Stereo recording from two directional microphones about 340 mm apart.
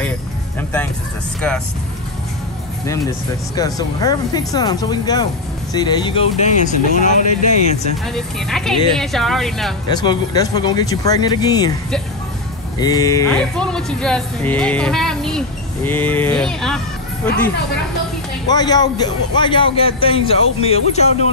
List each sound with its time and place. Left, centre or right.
3.5 s speech: centre
8.1 s speech: centre
9.9 s speech: centre
18.5 s speech: centre